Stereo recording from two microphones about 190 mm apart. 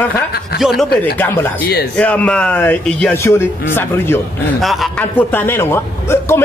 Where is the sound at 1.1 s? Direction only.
10° left (ahead or behind).